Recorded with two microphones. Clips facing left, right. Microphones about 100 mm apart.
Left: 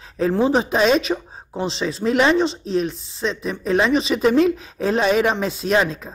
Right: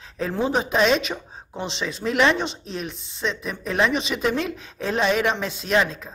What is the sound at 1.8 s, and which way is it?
Speech, 35° left (ahead or behind).